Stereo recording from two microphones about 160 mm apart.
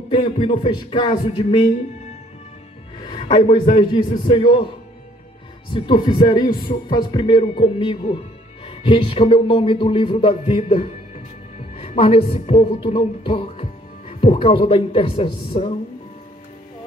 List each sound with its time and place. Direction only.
0.1 s a man's voice: 35° left (ahead or behind)
3.0 s a man's voice: 30° left (ahead or behind)
5.7 s a man's voice: 30° left (ahead or behind)